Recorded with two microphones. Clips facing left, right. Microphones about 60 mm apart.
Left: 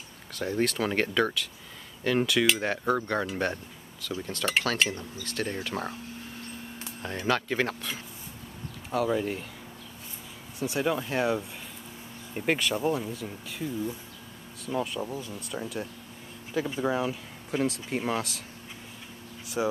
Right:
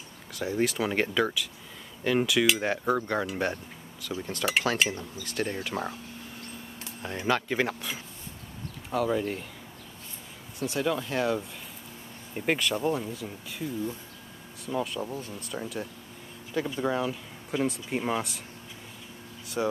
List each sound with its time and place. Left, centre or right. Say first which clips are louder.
0.3 s speech: even; centre
5.2 s speech: right 1 dB; right
5.6 s speech: right 1 dB; centre
7.2 s speech: even; centre
8.9 s speech: even; centre
10.7 s speech: left 1 dB; centre
19.6 s speech: even; centre